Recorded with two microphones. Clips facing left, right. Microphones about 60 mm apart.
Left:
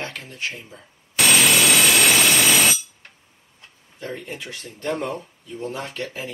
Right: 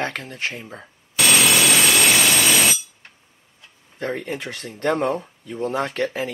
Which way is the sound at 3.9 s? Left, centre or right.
Right.